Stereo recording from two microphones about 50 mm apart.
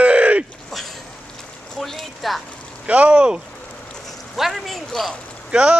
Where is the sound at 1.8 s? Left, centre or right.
Centre.